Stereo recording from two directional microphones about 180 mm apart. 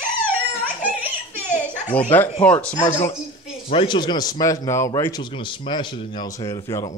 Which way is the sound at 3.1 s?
35° left (ahead or behind).